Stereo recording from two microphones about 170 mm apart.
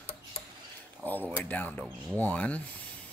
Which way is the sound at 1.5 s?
10° left (ahead or behind).